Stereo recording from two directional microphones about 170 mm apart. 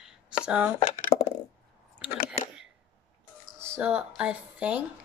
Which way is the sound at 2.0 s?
10° right (ahead or behind).